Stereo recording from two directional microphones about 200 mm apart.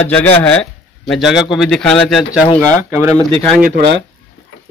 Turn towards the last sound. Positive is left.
turn(degrees=-55)  # may be behind; listen again after turning